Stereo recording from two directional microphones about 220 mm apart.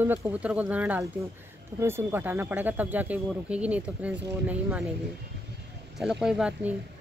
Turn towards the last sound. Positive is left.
turn(degrees=-5)  # may be behind; listen again after turning